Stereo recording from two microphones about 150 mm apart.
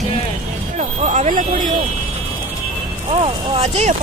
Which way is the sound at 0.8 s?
50° right (ahead or behind).